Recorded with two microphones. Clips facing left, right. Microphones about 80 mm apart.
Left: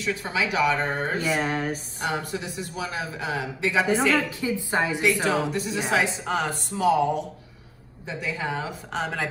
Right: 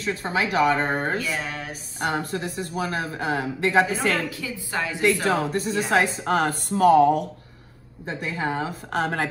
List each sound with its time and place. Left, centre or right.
0.0 s speech: right
1.2 s a sound: left
2.0 s a woman's voice: right
4.4 s a woman's voice: left
5.2 s a woman's voice: right
8.1 s speech: right
8.9 s a woman's voice: right